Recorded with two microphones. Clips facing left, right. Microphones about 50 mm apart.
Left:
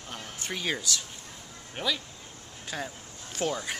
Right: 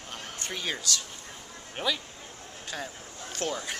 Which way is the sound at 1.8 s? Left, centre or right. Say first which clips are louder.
Right 1 dB; centre.